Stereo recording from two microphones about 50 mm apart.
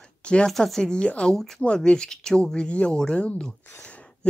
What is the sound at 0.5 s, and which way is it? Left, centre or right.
Speech, centre.